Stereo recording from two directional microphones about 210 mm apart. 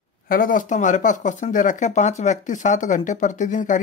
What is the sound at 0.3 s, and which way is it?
Speech, 40° left (ahead or behind).